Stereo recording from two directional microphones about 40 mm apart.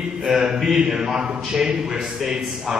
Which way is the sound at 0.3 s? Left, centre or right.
Right.